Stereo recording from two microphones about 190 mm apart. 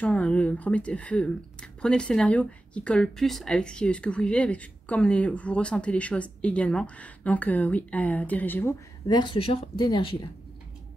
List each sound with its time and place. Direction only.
0.0 s speech: 5° left (ahead or behind)
9.0 s speech: 25° left (ahead or behind)